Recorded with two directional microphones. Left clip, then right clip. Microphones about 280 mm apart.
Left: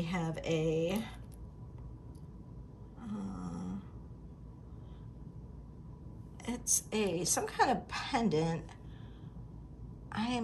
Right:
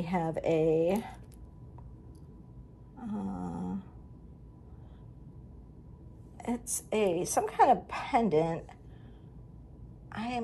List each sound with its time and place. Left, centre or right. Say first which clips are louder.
0.0 s speech: right 7 dB; centre
3.1 s a sound: right 5 dB; centre
6.3 s a woman's voice: left 1 dB; centre
10.0 s a woman's voice: right 1 dB; centre